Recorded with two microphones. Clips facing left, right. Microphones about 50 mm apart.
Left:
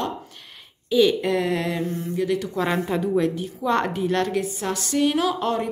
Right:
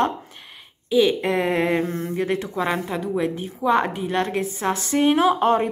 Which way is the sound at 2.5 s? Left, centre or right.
Centre.